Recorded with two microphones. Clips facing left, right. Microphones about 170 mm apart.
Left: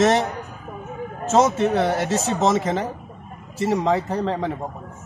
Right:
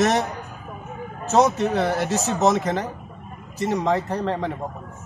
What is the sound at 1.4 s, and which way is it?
A man's voice, 5° left (ahead or behind).